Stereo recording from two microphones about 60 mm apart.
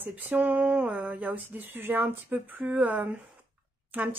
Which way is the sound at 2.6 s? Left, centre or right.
Right.